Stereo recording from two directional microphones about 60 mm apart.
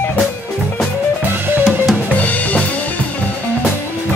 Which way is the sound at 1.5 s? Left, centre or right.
Right.